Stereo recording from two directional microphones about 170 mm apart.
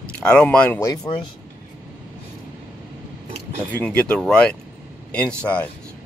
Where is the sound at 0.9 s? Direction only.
25° left (ahead or behind).